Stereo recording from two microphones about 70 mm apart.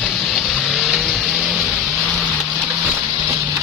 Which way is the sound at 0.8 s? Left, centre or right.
Centre.